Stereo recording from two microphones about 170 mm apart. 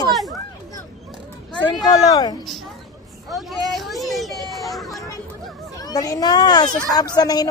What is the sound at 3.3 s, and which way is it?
Hubbub, centre (ahead or behind).